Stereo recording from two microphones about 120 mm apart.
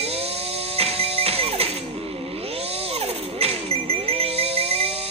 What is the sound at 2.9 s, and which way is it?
Music, 55° right (ahead or behind).